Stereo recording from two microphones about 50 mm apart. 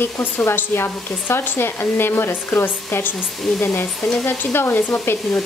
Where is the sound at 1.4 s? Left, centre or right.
Left.